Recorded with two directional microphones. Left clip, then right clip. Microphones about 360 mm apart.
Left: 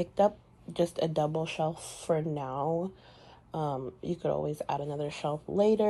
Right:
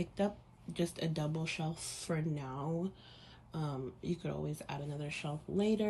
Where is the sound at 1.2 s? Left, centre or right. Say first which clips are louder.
Left 9 dB; left.